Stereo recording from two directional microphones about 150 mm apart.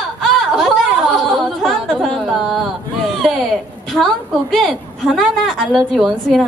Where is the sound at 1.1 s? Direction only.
Centre (ahead or behind).